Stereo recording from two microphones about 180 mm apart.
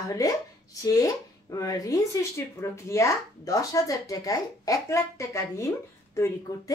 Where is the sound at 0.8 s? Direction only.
20° left (ahead or behind).